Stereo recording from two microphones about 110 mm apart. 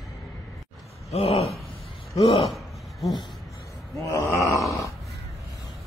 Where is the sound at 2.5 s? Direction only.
Centre (ahead or behind).